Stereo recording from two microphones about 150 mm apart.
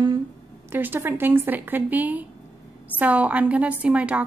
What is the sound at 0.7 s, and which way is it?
A woman's voice, 15° right (ahead or behind).